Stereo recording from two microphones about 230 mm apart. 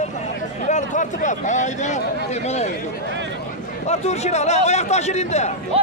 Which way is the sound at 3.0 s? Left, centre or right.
Right.